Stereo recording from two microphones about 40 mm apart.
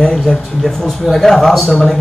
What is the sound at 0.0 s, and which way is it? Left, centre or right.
Speech, left.